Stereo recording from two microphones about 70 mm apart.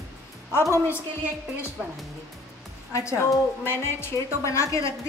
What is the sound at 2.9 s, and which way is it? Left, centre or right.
A woman's voice, left.